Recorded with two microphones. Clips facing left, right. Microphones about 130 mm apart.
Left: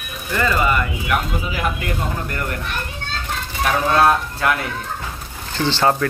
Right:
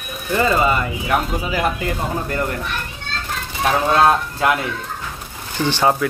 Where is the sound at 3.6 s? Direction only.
20° right (ahead or behind).